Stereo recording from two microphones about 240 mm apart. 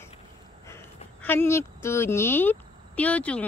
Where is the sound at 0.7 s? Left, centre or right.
Centre.